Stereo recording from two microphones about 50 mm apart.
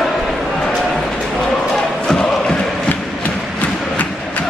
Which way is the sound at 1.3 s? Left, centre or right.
Centre.